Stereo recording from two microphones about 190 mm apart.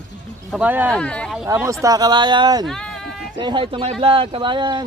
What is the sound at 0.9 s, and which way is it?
Speech, 5° left (ahead or behind).